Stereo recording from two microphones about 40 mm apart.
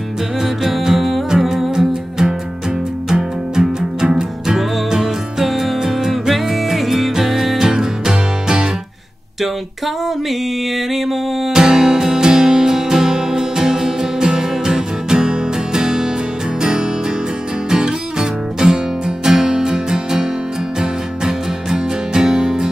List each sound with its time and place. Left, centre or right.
0.4 s music: centre
4.9 s music: centre
10.9 s music: centre
11.5 s music: centre
17.6 s music: centre